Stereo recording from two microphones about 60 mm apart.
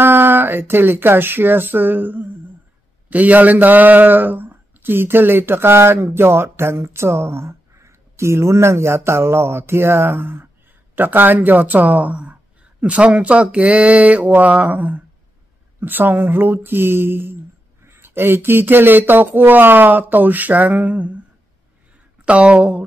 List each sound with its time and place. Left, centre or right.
0.0 s speech: right
22.2 s speech: centre